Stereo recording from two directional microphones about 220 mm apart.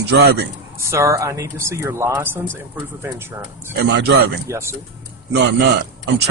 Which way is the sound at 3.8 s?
50° right (ahead or behind).